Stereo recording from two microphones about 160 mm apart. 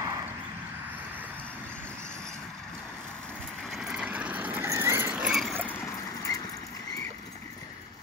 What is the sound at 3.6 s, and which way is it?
Vehicle, centre (ahead or behind).